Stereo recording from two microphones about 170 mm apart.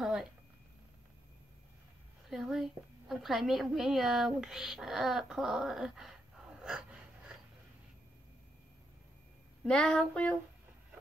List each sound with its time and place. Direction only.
0.0 s a sound: centre (ahead or behind)
2.2 s a woman's voice: 5° right (ahead or behind)
9.7 s female singing: 5° left (ahead or behind)